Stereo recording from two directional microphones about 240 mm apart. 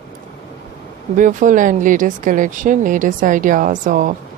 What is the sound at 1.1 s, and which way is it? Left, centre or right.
Speech, right.